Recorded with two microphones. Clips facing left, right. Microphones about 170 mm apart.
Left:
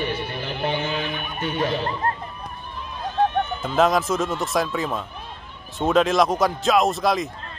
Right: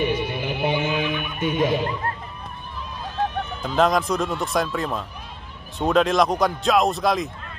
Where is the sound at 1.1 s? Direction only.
40° left (ahead or behind).